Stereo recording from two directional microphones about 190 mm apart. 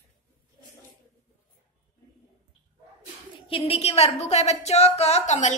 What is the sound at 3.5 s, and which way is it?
A woman's voice, 30° left (ahead or behind).